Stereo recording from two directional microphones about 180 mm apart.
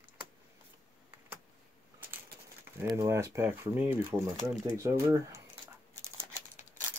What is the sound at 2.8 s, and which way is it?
Speech, 15° right (ahead or behind).